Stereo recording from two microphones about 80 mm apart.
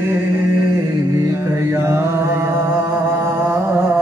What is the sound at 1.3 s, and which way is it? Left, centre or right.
Mantra, right.